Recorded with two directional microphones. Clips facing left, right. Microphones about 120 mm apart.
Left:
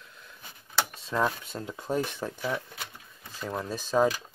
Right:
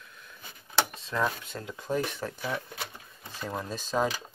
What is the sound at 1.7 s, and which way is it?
Speech, 25° left (ahead or behind).